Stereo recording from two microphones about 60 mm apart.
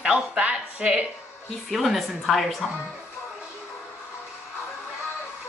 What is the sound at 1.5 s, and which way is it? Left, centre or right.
Speech, centre.